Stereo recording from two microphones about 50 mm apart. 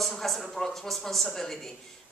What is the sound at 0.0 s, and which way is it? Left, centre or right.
Speech, centre.